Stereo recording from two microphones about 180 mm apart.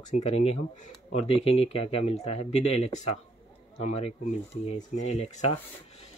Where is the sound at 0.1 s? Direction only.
40° left (ahead or behind).